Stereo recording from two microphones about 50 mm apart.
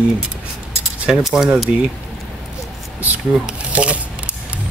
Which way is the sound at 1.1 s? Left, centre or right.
Centre.